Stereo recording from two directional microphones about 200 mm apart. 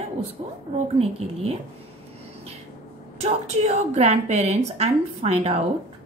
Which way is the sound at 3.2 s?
30° right (ahead or behind).